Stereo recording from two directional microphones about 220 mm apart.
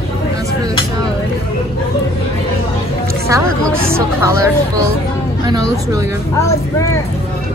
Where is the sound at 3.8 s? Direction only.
10° right (ahead or behind).